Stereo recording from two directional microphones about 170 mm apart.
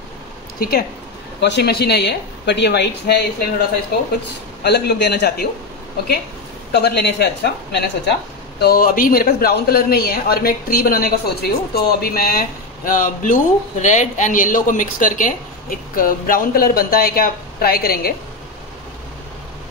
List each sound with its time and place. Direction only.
0.6 s speech: 65° left (ahead or behind)
1.4 s speech: 75° left (ahead or behind)
4.6 s a man's voice: 75° left (ahead or behind)
6.7 s a man's voice: 75° left (ahead or behind)